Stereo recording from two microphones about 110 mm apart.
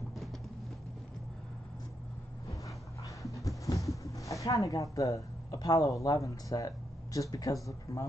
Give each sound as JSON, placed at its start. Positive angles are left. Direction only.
{"t": 3.0, "sound": "dog", "side_deg": 30}
{"t": 3.4, "sound": "a sound", "side_deg": 30}
{"t": 7.9, "sound": "speech", "side_deg": 30}